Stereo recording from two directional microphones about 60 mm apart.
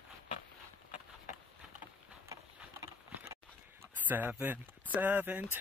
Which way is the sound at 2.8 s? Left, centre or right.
Right.